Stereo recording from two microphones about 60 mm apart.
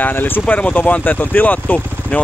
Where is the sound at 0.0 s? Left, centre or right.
Left.